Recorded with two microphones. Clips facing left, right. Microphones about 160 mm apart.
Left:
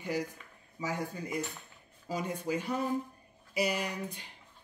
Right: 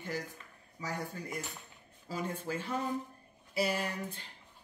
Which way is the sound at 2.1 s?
15° left (ahead or behind).